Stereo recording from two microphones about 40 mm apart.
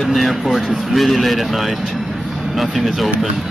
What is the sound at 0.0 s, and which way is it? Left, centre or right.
Speech, centre.